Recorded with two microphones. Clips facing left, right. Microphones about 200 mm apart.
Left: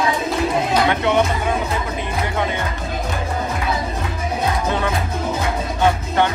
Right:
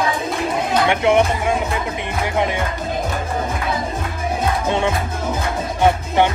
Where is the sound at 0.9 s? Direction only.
25° right (ahead or behind).